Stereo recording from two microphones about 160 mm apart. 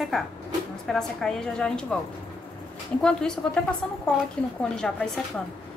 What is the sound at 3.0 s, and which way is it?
Speech, 5° left (ahead or behind).